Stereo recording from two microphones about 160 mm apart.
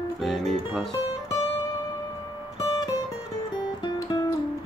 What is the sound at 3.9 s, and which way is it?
Music, 25° left (ahead or behind).